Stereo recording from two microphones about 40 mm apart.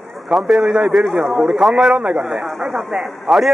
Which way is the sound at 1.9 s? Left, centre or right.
Right.